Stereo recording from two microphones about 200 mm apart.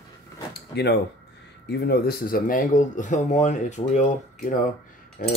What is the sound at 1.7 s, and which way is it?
Speech, 55° left (ahead or behind).